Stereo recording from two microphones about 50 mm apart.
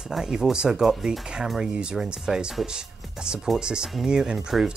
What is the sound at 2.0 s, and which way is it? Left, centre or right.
Speech, centre.